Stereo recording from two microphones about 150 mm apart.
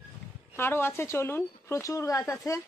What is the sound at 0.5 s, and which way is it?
A woman's voice, 15° left (ahead or behind).